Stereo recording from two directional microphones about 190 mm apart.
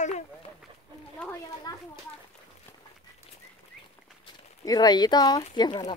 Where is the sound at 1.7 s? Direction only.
20° left (ahead or behind).